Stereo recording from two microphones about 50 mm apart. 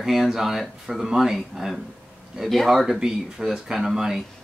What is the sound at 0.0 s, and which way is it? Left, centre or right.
Speech, centre.